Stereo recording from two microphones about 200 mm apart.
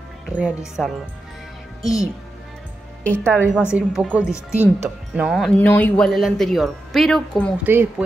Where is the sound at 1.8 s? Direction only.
15° left (ahead or behind).